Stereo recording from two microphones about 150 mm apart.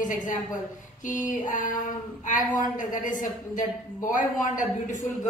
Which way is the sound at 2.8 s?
60° left (ahead or behind).